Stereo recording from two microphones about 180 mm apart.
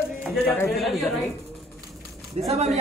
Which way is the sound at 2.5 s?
40° right (ahead or behind).